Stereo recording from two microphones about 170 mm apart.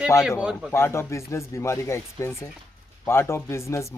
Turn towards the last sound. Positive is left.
turn(degrees=15)  # may be behind; listen again after turning